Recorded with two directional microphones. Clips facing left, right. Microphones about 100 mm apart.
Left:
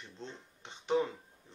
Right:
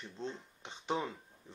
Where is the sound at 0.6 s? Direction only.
20° right (ahead or behind).